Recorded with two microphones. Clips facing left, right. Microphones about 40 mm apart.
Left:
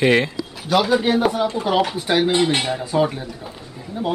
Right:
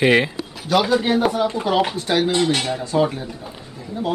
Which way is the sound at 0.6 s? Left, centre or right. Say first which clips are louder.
Even; centre.